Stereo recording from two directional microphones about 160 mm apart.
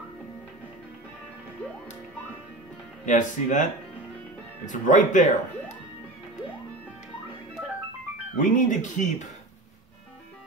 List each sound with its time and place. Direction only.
3.1 s speech: 50° left (ahead or behind)
4.6 s speech: 50° left (ahead or behind)
8.4 s speech: 55° left (ahead or behind)